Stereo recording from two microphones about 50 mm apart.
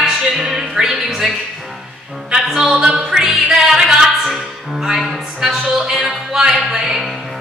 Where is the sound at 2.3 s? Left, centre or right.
Centre.